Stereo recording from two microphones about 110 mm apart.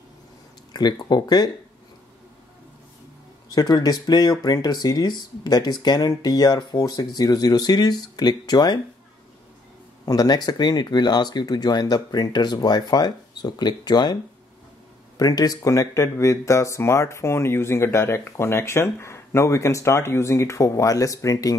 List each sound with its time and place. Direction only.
0.7 s speech: 40° left (ahead or behind)
3.4 s speech: 35° left (ahead or behind)
10.0 s speech: 35° left (ahead or behind)
15.1 s speech: 35° left (ahead or behind)